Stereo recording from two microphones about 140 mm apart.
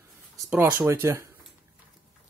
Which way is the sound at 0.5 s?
15° right (ahead or behind).